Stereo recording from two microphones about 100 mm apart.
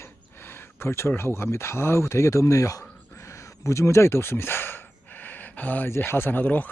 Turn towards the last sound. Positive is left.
turn(degrees=15)  # may be behind; listen again after turning